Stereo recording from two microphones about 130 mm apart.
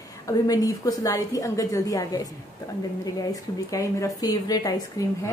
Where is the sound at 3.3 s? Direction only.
25° left (ahead or behind).